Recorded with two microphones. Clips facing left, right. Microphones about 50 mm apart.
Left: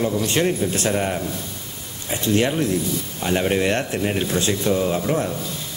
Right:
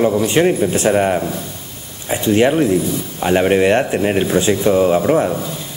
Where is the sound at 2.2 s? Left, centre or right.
Centre.